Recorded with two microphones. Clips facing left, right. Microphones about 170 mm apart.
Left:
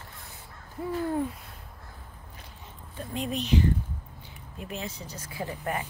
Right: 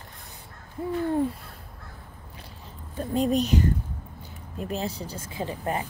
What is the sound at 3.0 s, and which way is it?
A woman's voice, 35° right (ahead or behind).